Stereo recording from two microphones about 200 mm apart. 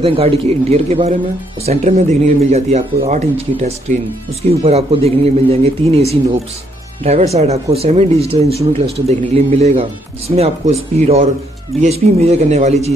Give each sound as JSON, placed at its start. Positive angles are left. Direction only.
{"t": 0.0, "sound": "speech", "side_deg": -30}